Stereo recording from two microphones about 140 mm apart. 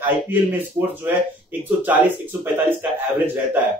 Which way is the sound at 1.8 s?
15° right (ahead or behind).